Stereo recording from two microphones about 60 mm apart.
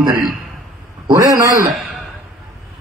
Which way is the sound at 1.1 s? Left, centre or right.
Right.